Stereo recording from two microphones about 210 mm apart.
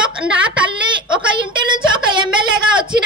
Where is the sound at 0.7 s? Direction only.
25° right (ahead or behind).